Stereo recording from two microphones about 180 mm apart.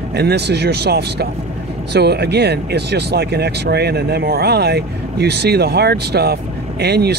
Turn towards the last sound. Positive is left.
turn(degrees=-65)  # may be behind; listen again after turning